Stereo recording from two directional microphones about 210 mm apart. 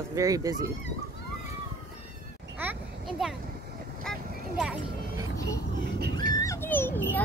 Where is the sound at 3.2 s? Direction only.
5° right (ahead or behind).